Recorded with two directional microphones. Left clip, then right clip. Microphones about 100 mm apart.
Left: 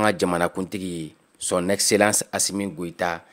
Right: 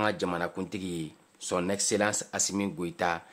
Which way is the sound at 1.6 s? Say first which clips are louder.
Left 10 dB; 70° left (ahead or behind).